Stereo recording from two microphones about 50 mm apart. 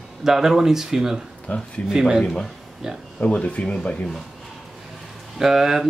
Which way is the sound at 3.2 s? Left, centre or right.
Left.